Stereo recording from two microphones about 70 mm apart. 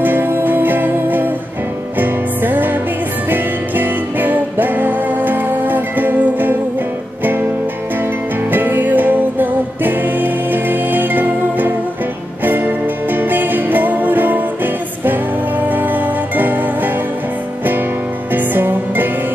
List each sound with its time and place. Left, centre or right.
0.0 s music: right
8.5 s music: right
18.3 s music: right